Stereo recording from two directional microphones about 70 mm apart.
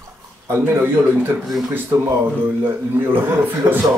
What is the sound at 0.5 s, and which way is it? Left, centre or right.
Speech, right.